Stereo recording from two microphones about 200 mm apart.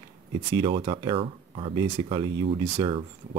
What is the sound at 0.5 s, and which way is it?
Speech, 25° right (ahead or behind).